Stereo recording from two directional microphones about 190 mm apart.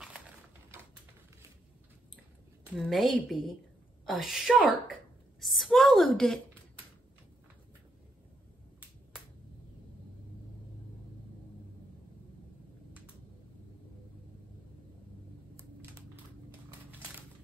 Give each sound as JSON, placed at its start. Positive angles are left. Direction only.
{"t": 2.8, "sound": "a woman's voice", "side_deg": 0}